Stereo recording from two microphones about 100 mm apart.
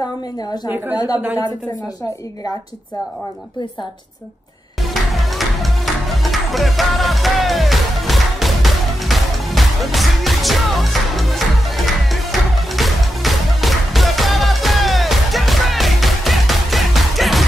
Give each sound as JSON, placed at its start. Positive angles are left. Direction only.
{"t": 0.7, "sound": "a woman's voice", "side_deg": -20}
{"t": 5.1, "sound": "music", "side_deg": 0}